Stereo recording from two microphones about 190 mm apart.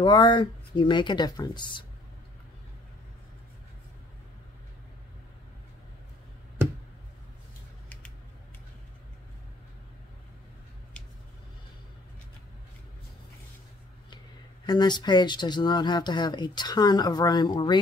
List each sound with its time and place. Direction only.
0.0 s speech: 25° left (ahead or behind)
14.7 s speech: 20° left (ahead or behind)